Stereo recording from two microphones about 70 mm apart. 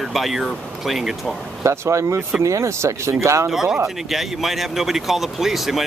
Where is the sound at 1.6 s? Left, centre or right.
Right.